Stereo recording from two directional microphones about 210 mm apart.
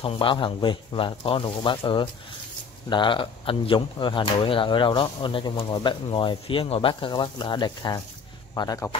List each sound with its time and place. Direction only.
0.0 s speech: 25° left (ahead or behind)